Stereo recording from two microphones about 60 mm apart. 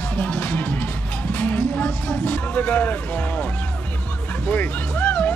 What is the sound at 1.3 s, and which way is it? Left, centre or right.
Vehicle, left.